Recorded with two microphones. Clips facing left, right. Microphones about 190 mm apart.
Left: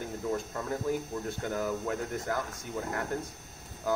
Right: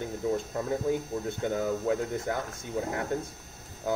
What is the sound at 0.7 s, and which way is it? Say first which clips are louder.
Speech: right 3 dB; 20° right (ahead or behind).